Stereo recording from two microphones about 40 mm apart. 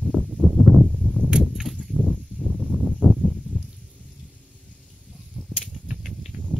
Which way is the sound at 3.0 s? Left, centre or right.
Left.